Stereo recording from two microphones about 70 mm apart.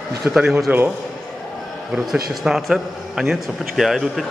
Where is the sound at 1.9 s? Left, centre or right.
Centre.